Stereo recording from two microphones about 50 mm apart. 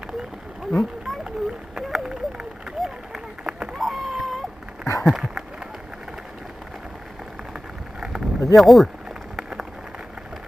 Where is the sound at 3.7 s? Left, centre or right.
Centre.